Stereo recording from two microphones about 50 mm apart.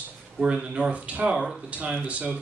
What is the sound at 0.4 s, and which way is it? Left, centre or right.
Speech, centre.